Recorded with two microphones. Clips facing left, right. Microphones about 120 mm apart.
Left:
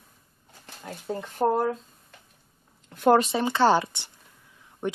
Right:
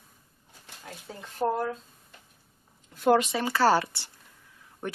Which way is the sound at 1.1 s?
60° left (ahead or behind).